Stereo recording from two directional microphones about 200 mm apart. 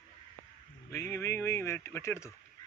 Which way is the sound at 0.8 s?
10° left (ahead or behind).